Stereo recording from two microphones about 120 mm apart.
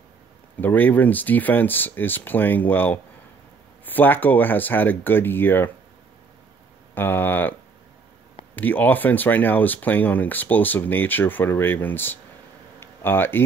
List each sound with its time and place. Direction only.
0.6 s speech: 15° left (ahead or behind)
7.0 s speech: 15° left (ahead or behind)
8.5 s speech: 15° left (ahead or behind)
12.8 s a sound: 15° left (ahead or behind)